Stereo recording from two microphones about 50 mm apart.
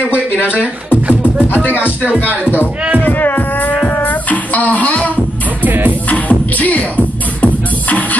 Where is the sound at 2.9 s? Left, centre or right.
Left.